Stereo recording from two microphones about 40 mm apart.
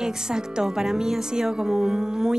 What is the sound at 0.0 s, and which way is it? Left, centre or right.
A woman's voice, centre.